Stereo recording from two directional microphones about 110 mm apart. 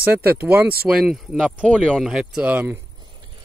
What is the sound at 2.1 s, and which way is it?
Speech, 5° right (ahead or behind).